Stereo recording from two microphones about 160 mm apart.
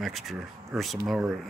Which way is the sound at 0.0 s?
Centre (ahead or behind).